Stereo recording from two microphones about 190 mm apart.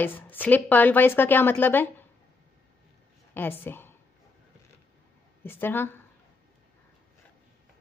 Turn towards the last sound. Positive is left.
turn(degrees=10)  # may be behind; listen again after turning